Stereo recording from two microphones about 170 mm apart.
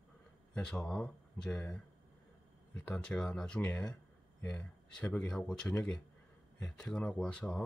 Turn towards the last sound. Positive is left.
turn(degrees=5)  # may be behind; listen again after turning